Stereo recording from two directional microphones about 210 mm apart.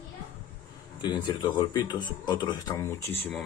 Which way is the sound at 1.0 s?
20° left (ahead or behind).